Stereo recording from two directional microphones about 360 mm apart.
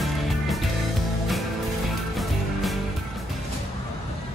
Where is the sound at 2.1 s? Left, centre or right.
Centre.